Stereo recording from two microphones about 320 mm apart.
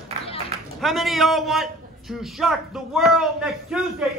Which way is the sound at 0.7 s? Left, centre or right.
Centre.